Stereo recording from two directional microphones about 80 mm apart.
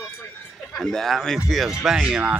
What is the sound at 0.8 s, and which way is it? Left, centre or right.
Speech, centre.